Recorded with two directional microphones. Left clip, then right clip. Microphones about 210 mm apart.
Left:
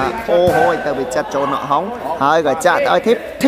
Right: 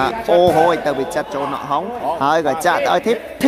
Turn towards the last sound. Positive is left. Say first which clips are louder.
# left 3 dB
turn(degrees=0)  # may be behind; listen again after turning